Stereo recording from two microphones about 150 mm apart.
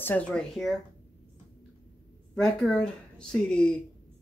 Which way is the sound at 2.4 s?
5° left (ahead or behind).